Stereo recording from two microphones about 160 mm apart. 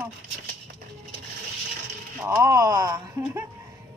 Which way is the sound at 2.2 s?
15° right (ahead or behind).